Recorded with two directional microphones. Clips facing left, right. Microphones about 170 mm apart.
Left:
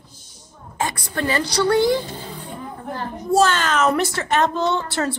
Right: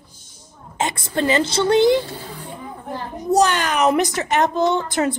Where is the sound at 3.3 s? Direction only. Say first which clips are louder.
Even; 15° right (ahead or behind).